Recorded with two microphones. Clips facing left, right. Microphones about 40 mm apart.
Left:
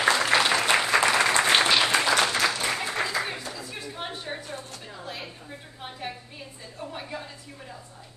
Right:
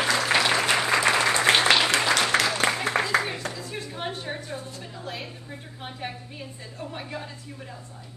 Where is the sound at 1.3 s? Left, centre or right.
Left.